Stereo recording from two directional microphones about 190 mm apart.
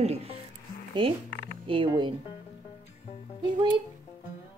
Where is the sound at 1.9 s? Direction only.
25° right (ahead or behind).